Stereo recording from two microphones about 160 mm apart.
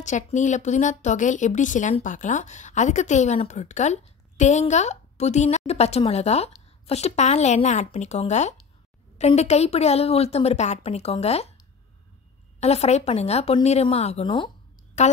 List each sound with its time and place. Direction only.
0.0 s a woman's voice: 50° left (ahead or behind)
12.5 s a woman's voice: 40° left (ahead or behind)
15.0 s speech: 45° left (ahead or behind)